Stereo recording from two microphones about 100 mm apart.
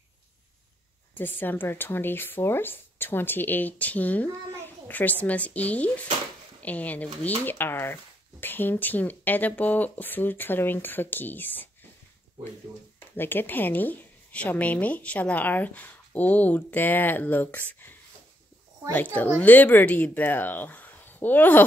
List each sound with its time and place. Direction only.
1.1 s a woman's voice: 20° left (ahead or behind)
13.1 s a woman's voice: 20° left (ahead or behind)
19.1 s speech: 15° left (ahead or behind)